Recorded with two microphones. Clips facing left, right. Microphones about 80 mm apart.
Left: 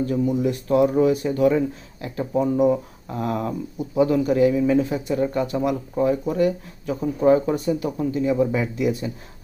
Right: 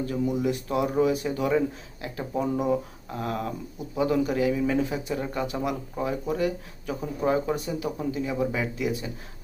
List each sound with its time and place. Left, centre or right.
0.3 s speech: centre